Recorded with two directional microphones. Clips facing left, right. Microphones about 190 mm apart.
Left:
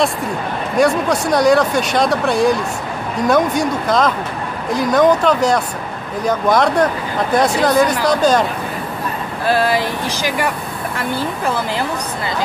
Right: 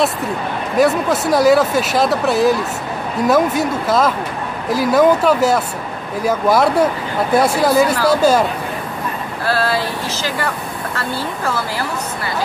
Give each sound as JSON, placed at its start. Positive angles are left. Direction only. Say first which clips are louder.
{"t": 0.7, "sound": "speech", "louder": "even", "side_deg": -5}
{"t": 9.5, "sound": "speech", "louder": "left 2 dB", "side_deg": 15}